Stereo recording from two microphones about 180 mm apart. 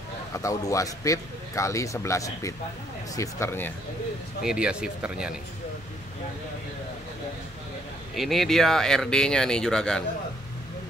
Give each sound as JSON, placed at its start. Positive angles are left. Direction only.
{"t": 0.3, "sound": "a man's voice", "side_deg": 15}
{"t": 4.4, "sound": "speech", "side_deg": -5}
{"t": 8.1, "sound": "speech", "side_deg": 0}